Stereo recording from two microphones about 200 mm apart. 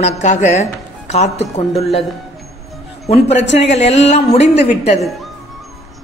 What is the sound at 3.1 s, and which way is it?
A man's voice, 35° left (ahead or behind).